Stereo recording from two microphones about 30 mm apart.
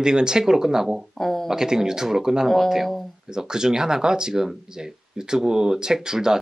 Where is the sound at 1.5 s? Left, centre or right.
Centre.